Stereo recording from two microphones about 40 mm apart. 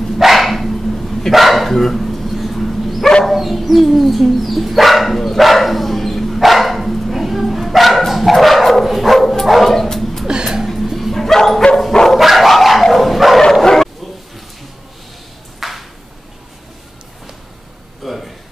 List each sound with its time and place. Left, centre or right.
0.0 s dog: centre
10.2 s a sound: centre
11.0 s bow-wow: centre
12.1 s dog: centre
13.4 s bow-wow: centre
15.6 s ping: centre
18.0 s a sound: centre